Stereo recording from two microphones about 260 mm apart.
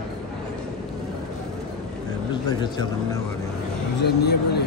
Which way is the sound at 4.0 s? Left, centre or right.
Left.